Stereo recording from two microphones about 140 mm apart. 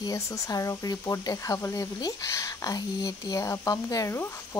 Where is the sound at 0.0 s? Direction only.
25° left (ahead or behind).